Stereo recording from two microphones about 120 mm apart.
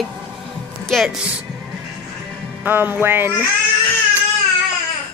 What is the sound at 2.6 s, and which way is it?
Speech, 15° right (ahead or behind).